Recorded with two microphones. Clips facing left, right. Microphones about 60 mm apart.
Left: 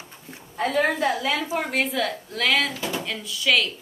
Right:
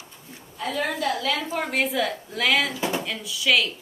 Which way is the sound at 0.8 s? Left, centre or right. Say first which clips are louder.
Left 2 dB; left.